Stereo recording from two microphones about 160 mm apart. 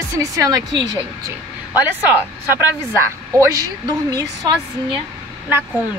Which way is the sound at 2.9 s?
20° right (ahead or behind).